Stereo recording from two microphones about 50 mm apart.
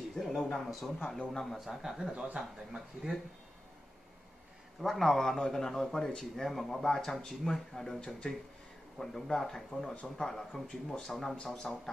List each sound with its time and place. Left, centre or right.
0.1 s a man's voice: centre
1.0 s a man's voice: left
1.3 s a man's voice: centre
2.3 s a man's voice: centre
4.8 s a man's voice: centre